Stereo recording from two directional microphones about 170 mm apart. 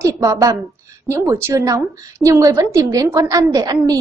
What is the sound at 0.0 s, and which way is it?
A woman's voice, 20° right (ahead or behind).